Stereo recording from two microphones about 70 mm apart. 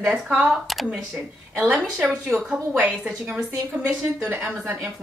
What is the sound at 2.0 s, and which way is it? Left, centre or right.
Speech, centre.